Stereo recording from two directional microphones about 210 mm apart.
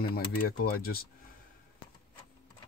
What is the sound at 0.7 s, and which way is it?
Speech, 45° left (ahead or behind).